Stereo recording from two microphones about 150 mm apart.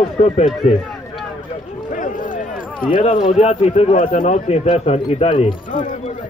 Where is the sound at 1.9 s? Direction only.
60° left (ahead or behind).